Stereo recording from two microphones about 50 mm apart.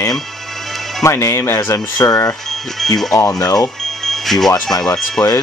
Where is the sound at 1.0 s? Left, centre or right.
Left.